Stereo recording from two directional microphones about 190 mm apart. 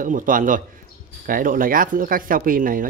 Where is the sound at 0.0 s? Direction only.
45° right (ahead or behind).